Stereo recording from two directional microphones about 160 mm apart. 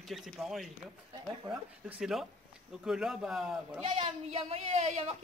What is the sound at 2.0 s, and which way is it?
A man's voice, 5° right (ahead or behind).